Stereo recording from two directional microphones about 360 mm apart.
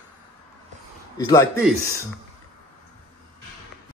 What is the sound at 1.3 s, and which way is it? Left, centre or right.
Speech, centre.